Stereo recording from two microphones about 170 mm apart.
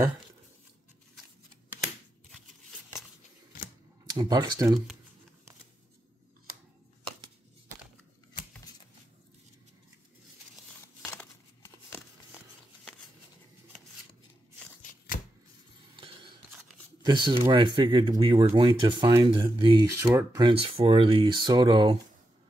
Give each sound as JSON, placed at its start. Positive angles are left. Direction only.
{"t": 4.1, "sound": "speech", "side_deg": -25}
{"t": 11.1, "sound": "crumpling", "side_deg": 10}
{"t": 17.0, "sound": "speech", "side_deg": -25}
{"t": 20.0, "sound": "speech", "side_deg": -15}
{"t": 20.4, "sound": "speech", "side_deg": -30}